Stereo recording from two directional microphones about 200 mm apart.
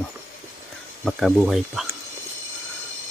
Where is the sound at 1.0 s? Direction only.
Centre (ahead or behind).